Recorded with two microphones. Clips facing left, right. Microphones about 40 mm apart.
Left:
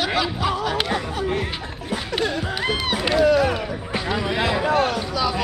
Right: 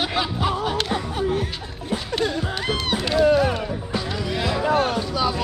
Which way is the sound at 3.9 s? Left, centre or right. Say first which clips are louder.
Left 4 dB; left.